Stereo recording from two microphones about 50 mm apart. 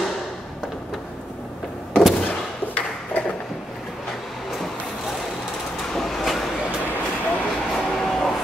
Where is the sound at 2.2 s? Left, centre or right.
Left.